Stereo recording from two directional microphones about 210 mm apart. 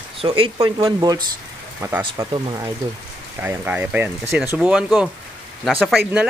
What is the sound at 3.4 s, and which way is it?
Speech, 10° right (ahead or behind).